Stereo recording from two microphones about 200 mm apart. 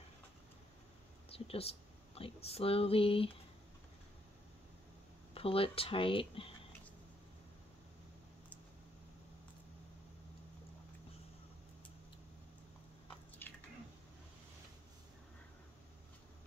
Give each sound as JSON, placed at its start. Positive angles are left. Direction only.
{"t": 1.3, "sound": "speech", "side_deg": 30}
{"t": 5.3, "sound": "speech", "side_deg": 30}
{"t": 13.4, "sound": "squish", "side_deg": 10}